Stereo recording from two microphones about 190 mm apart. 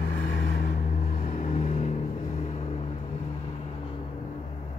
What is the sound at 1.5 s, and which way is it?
Vehicle, 40° left (ahead or behind).